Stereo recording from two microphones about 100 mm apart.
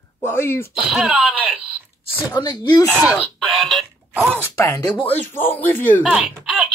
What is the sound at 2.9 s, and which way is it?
Speech, 10° right (ahead or behind).